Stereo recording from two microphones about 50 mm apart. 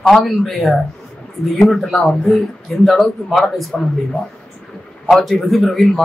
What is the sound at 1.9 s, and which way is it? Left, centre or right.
Speech, centre.